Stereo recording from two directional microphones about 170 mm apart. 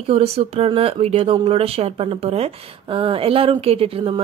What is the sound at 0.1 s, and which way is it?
Speech, 35° right (ahead or behind).